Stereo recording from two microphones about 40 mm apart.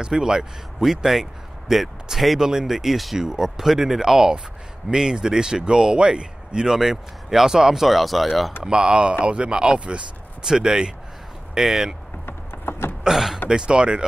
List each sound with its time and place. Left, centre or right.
0.0 s speech: centre
6.7 s speech: centre
8.6 s speech: right
12.3 s a sound: left
13.0 s speech: centre
13.5 s speech: right